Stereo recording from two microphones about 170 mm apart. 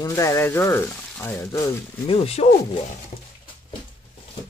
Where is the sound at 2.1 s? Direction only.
35° left (ahead or behind).